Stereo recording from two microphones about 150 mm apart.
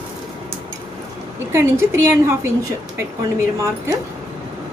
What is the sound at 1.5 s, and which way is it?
Speech, 15° right (ahead or behind).